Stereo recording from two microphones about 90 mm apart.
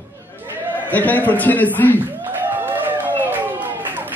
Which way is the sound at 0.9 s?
20° left (ahead or behind).